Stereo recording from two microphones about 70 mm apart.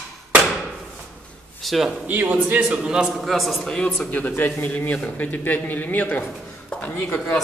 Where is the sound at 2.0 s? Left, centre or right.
Right.